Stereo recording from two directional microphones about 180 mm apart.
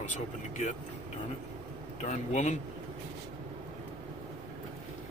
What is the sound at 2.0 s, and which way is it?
Speech, 40° left (ahead or behind).